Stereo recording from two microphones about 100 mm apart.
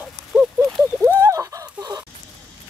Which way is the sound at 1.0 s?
25° right (ahead or behind).